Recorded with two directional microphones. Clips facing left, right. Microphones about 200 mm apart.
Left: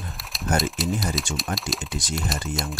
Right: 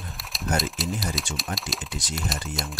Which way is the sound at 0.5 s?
Centre (ahead or behind).